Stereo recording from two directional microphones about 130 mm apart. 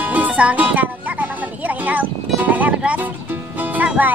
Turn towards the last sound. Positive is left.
turn(degrees=-10)  # may be behind; listen again after turning